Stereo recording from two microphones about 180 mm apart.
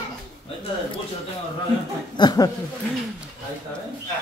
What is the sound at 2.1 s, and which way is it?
Speech, 20° left (ahead or behind).